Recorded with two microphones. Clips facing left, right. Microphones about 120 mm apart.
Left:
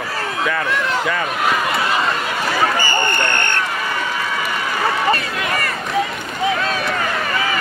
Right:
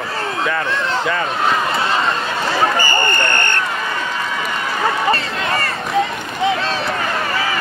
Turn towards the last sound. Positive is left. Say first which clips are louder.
# right 1 dB
turn(degrees=-30)  # may be behind; listen again after turning